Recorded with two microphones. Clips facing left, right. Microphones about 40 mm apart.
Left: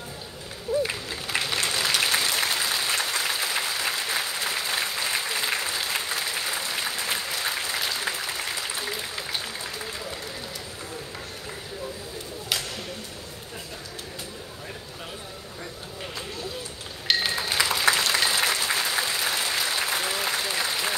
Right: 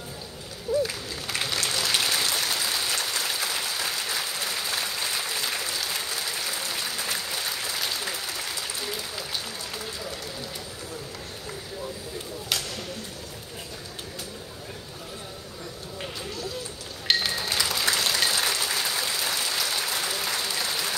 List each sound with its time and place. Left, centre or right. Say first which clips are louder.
1.5 s applause: even; left
4.9 s applause: left 2 dB; left
17.4 s applause: left 2 dB; left